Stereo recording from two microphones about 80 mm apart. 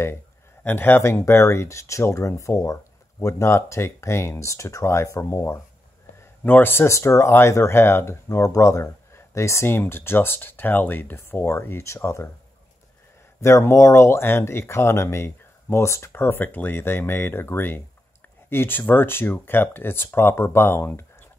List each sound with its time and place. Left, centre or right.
0.7 s speech: left
13.4 s speech: left